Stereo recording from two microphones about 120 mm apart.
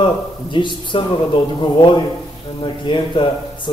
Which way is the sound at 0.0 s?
40° left (ahead or behind).